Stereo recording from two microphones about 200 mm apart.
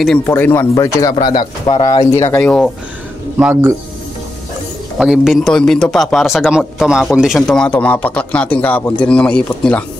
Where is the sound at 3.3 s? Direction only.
10° right (ahead or behind).